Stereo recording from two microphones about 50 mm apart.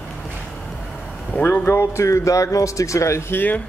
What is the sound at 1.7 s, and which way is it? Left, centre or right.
A man's voice, left.